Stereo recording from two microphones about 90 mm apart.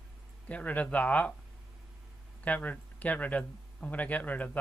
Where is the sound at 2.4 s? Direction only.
15° left (ahead or behind).